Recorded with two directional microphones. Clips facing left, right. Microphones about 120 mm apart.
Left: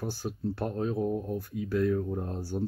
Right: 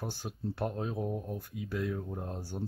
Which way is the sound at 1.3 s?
15° right (ahead or behind).